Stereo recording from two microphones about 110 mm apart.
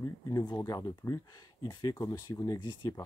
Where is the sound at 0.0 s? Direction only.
35° left (ahead or behind).